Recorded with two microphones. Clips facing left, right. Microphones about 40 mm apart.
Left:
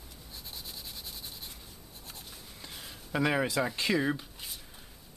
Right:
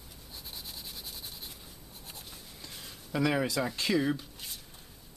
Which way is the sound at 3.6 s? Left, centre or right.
Centre.